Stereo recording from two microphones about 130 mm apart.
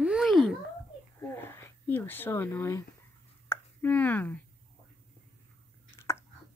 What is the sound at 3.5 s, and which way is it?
Plop, 15° left (ahead or behind).